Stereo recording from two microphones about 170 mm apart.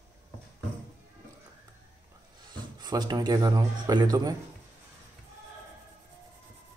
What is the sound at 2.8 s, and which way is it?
A man's voice, 25° right (ahead or behind).